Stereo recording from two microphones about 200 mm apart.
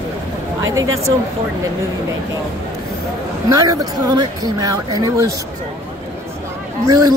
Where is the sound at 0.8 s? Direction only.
90° right.